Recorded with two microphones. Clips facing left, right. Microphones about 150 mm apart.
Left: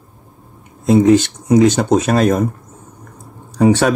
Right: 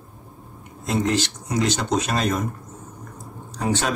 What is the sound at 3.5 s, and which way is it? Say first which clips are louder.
Speech: left 12 dB; 65° left (ahead or behind).